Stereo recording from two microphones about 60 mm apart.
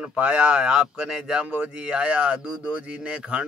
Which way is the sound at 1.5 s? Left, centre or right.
Right.